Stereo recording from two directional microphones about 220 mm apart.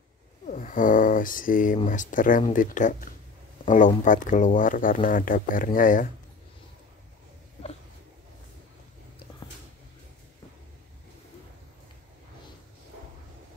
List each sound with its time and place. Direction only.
0.5 s speech: 35° left (ahead or behind)